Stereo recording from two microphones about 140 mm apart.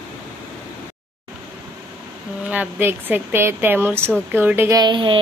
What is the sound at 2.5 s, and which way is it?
A woman's voice, 10° right (ahead or behind).